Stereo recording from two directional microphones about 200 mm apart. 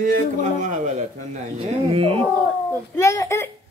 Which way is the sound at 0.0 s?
40° right (ahead or behind).